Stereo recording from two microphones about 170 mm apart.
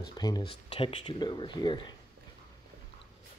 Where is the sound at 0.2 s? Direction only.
25° left (ahead or behind).